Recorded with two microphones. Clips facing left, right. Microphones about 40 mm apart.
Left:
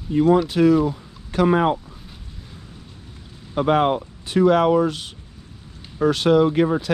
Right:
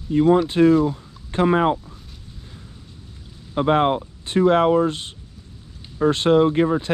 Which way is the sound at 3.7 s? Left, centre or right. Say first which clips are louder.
Even; right.